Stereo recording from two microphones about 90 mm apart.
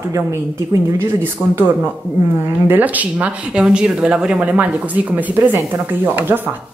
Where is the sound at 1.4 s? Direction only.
10° right (ahead or behind).